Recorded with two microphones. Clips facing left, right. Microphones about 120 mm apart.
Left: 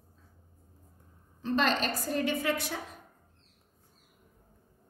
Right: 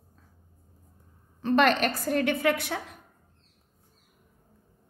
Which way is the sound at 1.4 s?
65° right (ahead or behind).